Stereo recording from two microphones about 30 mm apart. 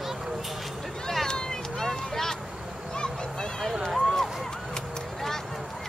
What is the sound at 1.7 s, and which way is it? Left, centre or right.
Vehicle, centre.